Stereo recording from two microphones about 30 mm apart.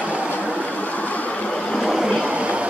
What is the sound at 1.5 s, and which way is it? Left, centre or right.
Vehicle, left.